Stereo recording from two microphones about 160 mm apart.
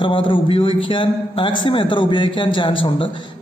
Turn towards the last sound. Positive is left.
turn(degrees=30)  # may be behind; listen again after turning